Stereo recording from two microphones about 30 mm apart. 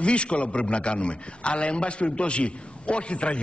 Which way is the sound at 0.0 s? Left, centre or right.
Left.